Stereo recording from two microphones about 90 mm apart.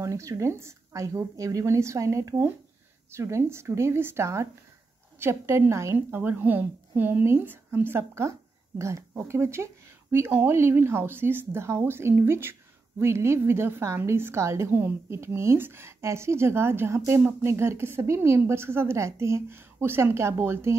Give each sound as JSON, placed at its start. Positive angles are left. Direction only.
{"t": 0.0, "sound": "a woman's voice", "side_deg": -35}